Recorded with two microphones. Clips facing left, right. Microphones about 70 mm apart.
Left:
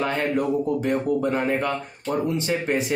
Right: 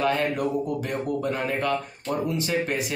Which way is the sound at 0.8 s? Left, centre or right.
Left.